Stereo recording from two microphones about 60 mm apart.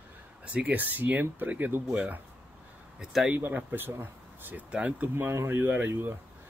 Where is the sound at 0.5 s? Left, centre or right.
Right.